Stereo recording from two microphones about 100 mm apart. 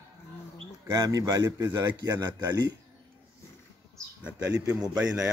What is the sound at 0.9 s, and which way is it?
Speech, 40° right (ahead or behind).